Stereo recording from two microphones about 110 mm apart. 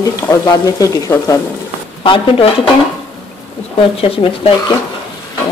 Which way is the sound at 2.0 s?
50° left (ahead or behind).